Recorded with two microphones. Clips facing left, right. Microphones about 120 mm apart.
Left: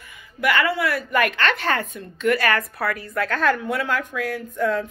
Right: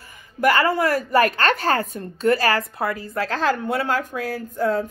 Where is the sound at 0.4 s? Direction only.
40° right (ahead or behind).